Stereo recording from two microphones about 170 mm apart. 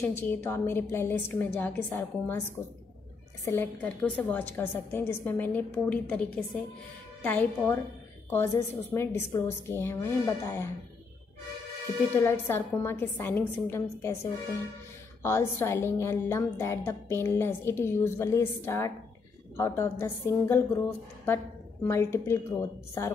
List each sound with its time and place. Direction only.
0.0 s a woman's voice: 10° left (ahead or behind)
12.2 s a woman's voice: 15° left (ahead or behind)
15.2 s a woman's voice: 15° left (ahead or behind)
21.8 s a woman's voice: 15° left (ahead or behind)